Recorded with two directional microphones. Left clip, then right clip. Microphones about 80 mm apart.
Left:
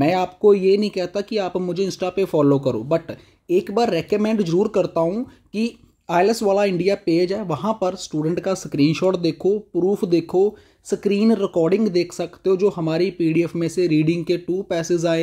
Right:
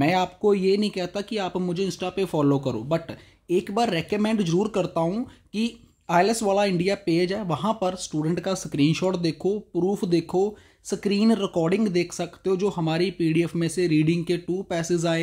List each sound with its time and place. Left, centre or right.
0.0 s speech: left
2.2 s speech: left